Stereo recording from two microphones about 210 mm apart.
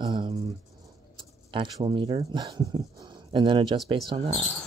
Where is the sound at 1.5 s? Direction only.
25° right (ahead or behind).